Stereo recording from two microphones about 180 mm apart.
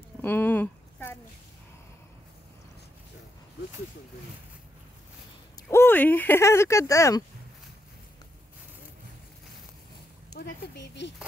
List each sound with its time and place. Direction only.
0.2 s a sound: 10° left (ahead or behind)
5.7 s speech: 10° left (ahead or behind)
10.3 s speech: 70° left (ahead or behind)